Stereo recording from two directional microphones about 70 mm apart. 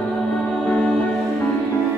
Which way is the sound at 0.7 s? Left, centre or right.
Centre.